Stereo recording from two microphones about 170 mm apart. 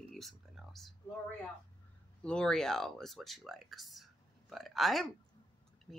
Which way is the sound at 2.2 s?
5° left (ahead or behind).